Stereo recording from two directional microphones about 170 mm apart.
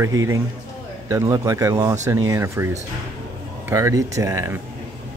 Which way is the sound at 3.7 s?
15° right (ahead or behind).